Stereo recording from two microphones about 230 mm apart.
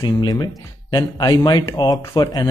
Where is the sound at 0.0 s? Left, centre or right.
Centre.